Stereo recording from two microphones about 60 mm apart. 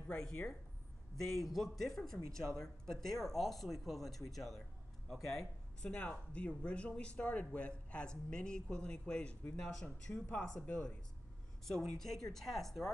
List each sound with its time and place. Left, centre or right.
0.1 s speech: centre
1.1 s speech: centre
5.8 s speech: centre